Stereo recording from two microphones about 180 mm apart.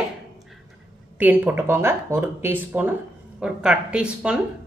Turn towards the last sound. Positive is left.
turn(degrees=-5)  # may be behind; listen again after turning